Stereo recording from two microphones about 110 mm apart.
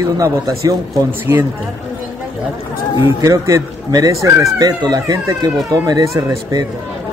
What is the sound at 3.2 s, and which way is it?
A man's voice, 30° right (ahead or behind).